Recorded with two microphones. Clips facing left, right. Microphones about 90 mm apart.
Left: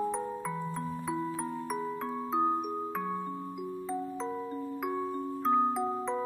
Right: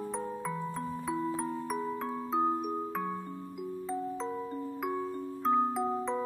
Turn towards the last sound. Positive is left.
turn(degrees=0)  # may be behind; listen again after turning